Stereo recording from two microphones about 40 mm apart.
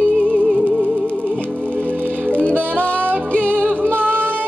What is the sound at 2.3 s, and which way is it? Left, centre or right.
Music, left.